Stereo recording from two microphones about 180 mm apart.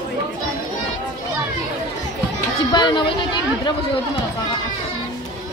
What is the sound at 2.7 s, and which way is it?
Speech, 25° left (ahead or behind).